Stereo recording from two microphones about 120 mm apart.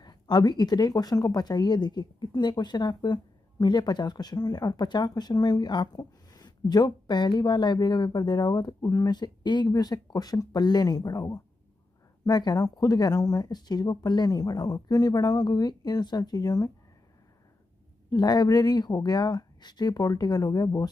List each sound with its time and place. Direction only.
0.0 s speech: 35° left (ahead or behind)
18.1 s speech: 35° left (ahead or behind)